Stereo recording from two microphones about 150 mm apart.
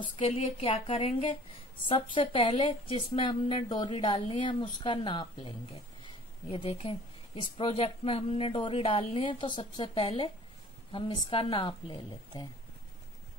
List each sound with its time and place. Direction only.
0.0 s speech: 40° left (ahead or behind)
6.5 s speech: 40° left (ahead or behind)